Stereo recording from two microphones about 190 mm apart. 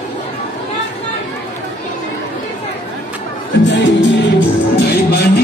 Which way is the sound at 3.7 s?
65° left (ahead or behind).